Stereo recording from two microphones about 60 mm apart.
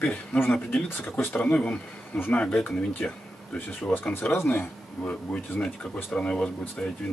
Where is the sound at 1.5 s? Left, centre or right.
Centre.